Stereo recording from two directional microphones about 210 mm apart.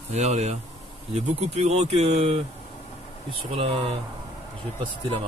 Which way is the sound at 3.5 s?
25° right (ahead or behind).